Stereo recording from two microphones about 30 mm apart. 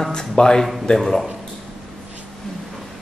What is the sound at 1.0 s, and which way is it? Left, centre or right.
Speech, centre.